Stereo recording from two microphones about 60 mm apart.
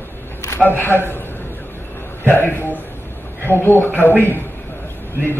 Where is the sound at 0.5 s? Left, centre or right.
Left.